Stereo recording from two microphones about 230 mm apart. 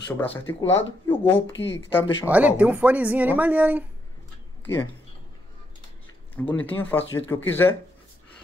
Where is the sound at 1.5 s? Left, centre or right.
Left.